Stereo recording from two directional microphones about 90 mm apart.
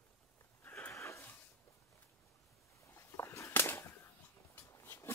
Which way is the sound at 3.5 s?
25° left (ahead or behind).